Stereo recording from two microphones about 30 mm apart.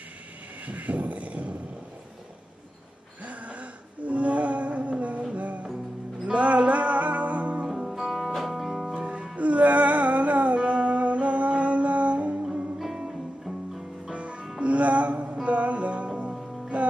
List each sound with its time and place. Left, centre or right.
0.7 s a sound: right
3.3 s a sound: right
6.3 s music: right
7.6 s music: centre
8.0 s music: centre
8.4 s music: centre
8.9 s music: right
9.4 s music: right
12.7 s music: centre
14.1 s music: right
16.1 s music: right
16.7 s music: right